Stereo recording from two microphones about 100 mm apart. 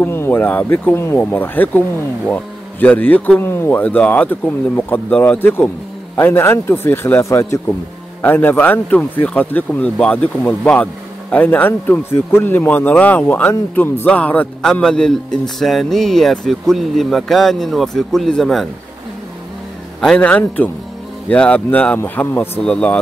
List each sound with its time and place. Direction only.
0.0 s a man's voice: 25° left (ahead or behind); by 18.7 s centre (ahead or behind)
20.2 s speech: 15° left (ahead or behind)
22.6 s speech: 10° left (ahead or behind)